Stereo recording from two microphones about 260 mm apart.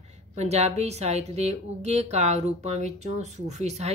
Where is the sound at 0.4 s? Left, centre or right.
Right.